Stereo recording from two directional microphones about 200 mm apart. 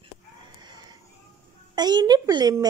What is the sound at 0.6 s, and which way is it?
Music, 20° right (ahead or behind).